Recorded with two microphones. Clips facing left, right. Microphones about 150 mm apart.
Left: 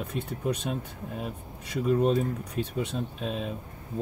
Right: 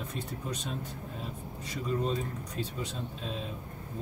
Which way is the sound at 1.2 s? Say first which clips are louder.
Left 4 dB; 60° left (ahead or behind).